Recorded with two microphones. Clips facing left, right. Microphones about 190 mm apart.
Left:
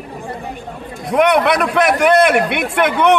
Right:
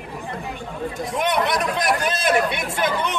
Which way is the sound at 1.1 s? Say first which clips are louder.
Left 10 dB; 75° left (ahead or behind).